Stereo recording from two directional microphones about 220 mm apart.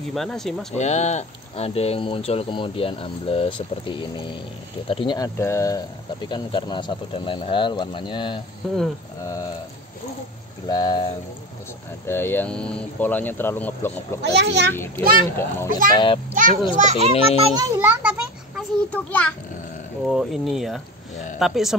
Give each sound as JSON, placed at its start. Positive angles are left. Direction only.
{"t": 0.1, "sound": "speech", "side_deg": 0}
{"t": 0.7, "sound": "speech", "side_deg": 30}
{"t": 8.6, "sound": "speech", "side_deg": 0}
{"t": 10.7, "sound": "speech", "side_deg": 20}
{"t": 12.1, "sound": "speech", "side_deg": 10}
{"t": 14.2, "sound": "a child's voice", "side_deg": -50}
{"t": 14.7, "sound": "speech", "side_deg": 10}
{"t": 16.3, "sound": "a child's voice", "side_deg": -35}
{"t": 17.6, "sound": "a child's voice", "side_deg": -10}
{"t": 18.6, "sound": "a child's voice", "side_deg": 5}